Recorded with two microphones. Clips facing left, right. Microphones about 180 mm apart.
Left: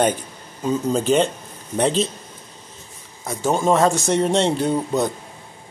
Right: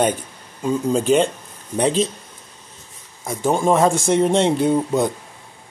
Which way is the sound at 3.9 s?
55° right (ahead or behind).